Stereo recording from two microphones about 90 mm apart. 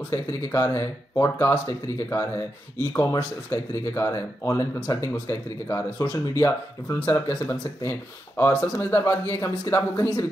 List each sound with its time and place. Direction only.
0.1 s speech: 30° left (ahead or behind)